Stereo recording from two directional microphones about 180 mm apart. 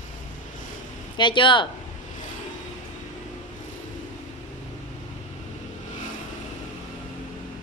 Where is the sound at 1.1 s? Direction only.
25° left (ahead or behind).